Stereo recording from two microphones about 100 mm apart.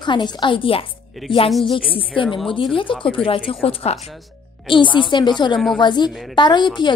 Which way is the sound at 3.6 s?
90° left.